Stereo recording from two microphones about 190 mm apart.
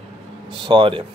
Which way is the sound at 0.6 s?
25° right (ahead or behind).